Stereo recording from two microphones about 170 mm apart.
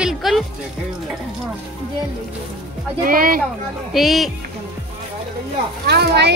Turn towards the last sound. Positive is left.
turn(degrees=-80)